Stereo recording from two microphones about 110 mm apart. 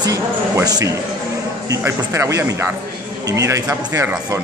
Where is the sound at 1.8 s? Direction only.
25° right (ahead or behind).